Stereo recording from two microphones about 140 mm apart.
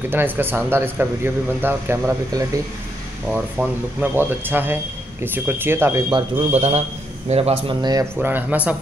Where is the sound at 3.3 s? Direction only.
10° right (ahead or behind).